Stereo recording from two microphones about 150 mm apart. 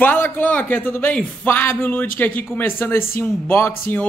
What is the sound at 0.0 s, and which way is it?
A man's voice, 10° left (ahead or behind).